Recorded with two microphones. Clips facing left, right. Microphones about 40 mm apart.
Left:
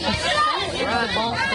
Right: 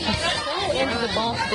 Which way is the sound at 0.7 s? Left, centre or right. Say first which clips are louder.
Right 1 dB; centre.